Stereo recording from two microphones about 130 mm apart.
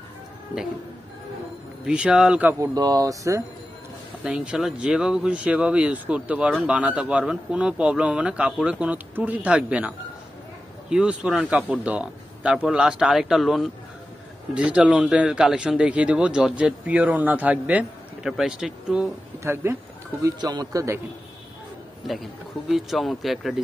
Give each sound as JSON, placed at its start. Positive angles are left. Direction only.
{"t": 1.9, "sound": "speech", "side_deg": -10}
{"t": 2.6, "sound": "speech", "side_deg": -30}
{"t": 4.2, "sound": "speech", "side_deg": -10}
{"t": 19.4, "sound": "speech", "side_deg": -20}
{"t": 20.2, "sound": "speech", "side_deg": -30}
{"t": 22.0, "sound": "speech", "side_deg": 0}